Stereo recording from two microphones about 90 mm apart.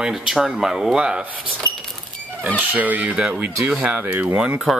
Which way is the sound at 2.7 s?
15° right (ahead or behind).